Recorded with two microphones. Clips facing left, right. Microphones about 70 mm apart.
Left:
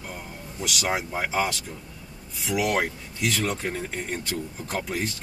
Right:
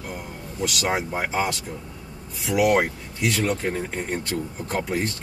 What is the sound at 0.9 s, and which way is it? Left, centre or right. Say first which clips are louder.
Speech: right 2 dB; right.